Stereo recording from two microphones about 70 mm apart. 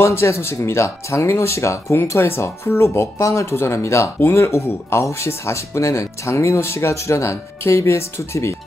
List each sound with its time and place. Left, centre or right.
0.0 s speech: left